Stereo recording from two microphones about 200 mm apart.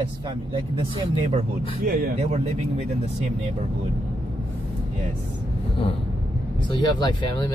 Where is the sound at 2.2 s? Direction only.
30° right (ahead or behind).